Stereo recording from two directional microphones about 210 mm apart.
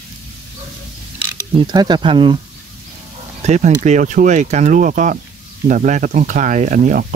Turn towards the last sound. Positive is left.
turn(degrees=-40)  # may be behind; listen again after turning